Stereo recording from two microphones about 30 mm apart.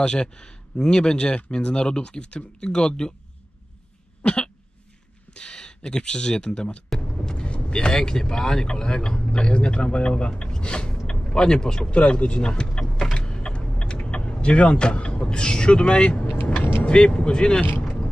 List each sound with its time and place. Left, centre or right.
0.0 s speech: left
5.3 s speech: left
7.2 s vehicle: left
8.1 s speech: centre; by 10.3 s left
10.4 s a sound: left
11.9 s speech: left
12.4 s speech: left
13.1 s power windows: left
13.4 s vehicle: left
15.2 s speech: left